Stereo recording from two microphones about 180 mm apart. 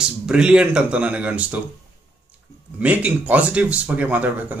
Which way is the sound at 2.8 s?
10° right (ahead or behind).